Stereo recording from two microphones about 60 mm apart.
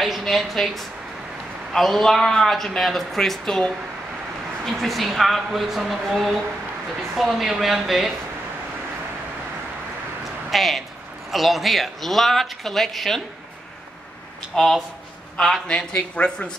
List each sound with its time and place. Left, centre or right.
0.0 s a woman's voice: centre
10.5 s a woman's voice: centre
14.5 s speech: centre
15.6 s speech: centre